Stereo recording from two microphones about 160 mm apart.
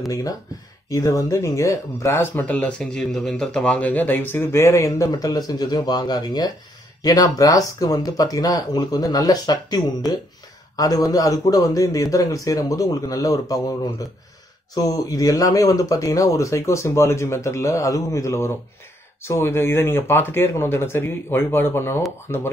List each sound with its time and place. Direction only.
0.8 s speech: 20° left (ahead or behind)